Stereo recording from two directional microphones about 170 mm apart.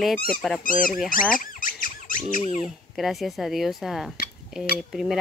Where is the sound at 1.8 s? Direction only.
50° left (ahead or behind).